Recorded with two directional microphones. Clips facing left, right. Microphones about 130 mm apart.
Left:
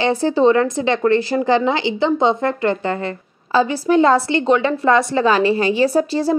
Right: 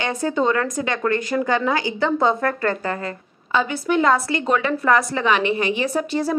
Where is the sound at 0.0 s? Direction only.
30° left (ahead or behind).